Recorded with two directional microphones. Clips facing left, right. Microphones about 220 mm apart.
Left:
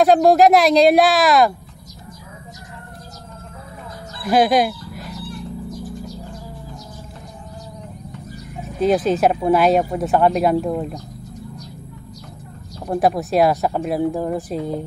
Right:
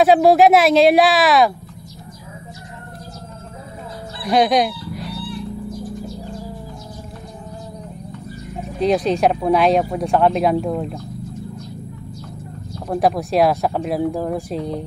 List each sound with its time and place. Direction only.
0.0 s speech: 5° right (ahead or behind)
4.3 s speech: 5° left (ahead or behind)
5.0 s fowl: 45° left (ahead or behind)
8.7 s speech: centre (ahead or behind)
12.8 s speech: centre (ahead or behind)